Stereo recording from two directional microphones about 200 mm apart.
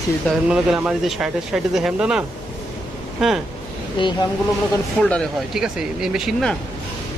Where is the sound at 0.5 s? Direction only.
5° right (ahead or behind).